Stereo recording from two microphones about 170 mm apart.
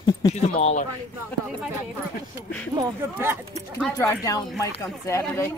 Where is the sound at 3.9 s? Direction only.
20° left (ahead or behind).